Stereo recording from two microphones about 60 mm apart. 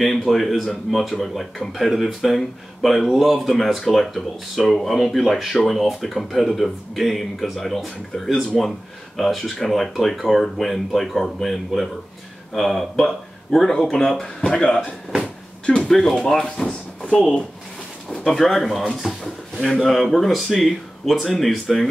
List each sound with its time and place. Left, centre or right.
0.0 s speech: centre
15.6 s a sound: centre
15.9 s speech: centre
18.1 s speech: centre